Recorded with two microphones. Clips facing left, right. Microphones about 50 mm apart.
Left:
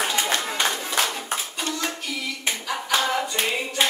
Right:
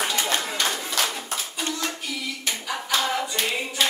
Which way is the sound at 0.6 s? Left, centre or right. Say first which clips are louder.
Left 2 dB; left.